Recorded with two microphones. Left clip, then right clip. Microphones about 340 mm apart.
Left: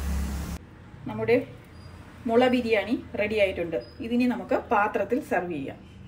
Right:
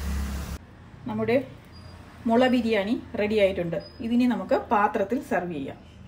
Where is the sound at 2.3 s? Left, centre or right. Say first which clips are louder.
Even; right.